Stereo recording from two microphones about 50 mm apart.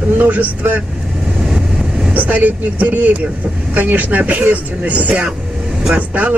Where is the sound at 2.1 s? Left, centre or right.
Right.